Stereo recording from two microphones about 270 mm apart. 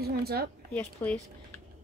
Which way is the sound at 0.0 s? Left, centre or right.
Right.